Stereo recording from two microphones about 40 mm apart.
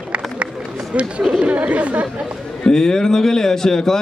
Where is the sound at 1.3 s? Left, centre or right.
Right.